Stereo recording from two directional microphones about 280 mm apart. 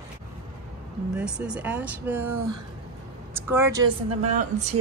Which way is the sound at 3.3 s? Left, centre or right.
Centre.